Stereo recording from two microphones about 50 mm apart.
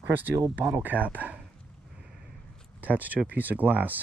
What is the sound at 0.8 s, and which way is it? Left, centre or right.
Speech, right.